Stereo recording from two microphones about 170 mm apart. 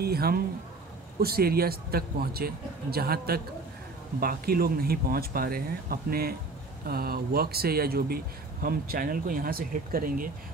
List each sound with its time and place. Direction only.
0.0 s speech: 65° right (ahead or behind)